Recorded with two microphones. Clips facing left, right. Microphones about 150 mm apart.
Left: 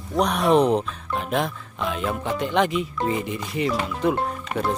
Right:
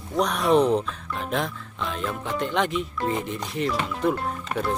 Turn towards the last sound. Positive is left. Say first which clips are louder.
# left 2 dB
turn(degrees=5)  # may be behind; listen again after turning